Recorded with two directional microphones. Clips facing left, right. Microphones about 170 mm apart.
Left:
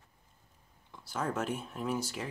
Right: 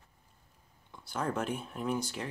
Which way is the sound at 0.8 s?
Centre (ahead or behind).